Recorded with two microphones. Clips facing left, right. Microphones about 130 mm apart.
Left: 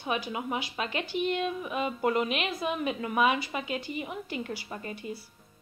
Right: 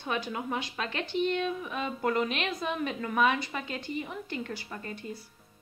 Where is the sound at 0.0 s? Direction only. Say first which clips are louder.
Left 1 dB; 10° left (ahead or behind).